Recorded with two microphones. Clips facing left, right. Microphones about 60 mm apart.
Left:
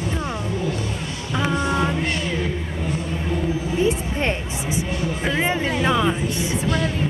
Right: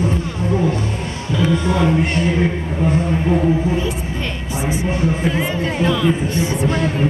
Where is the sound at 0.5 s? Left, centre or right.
Right.